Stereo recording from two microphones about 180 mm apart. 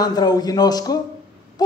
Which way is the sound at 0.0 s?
20° left (ahead or behind).